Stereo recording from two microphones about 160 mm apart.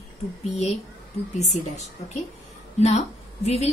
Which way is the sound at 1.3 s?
45° left (ahead or behind).